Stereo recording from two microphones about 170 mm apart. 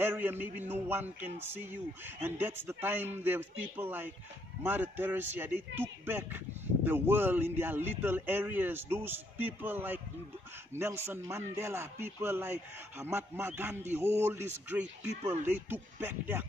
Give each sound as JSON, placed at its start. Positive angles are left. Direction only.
{"t": 0.0, "sound": "speech", "side_deg": -15}